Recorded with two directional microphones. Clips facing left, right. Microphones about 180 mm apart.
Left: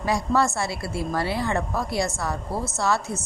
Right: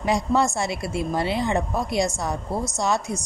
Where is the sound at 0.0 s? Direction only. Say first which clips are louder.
Right 1 dB; 20° right (ahead or behind).